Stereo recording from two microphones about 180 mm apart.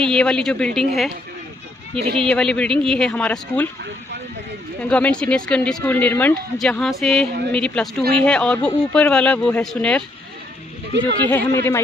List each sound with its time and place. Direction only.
0.0 s a woman's voice: 5° left (ahead or behind)
2.2 s a woman's voice: 5° left (ahead or behind)
4.8 s a woman's voice: 5° left (ahead or behind)
10.9 s speech: 75° right (ahead or behind)
11.2 s speech: 10° left (ahead or behind)